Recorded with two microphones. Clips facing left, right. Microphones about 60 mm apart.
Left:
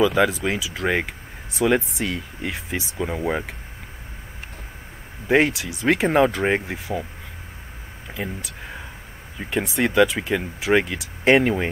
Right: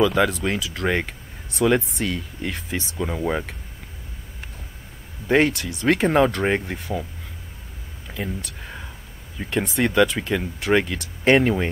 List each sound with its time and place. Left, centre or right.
0.0 s speech: centre
5.3 s speech: centre
8.1 s speech: centre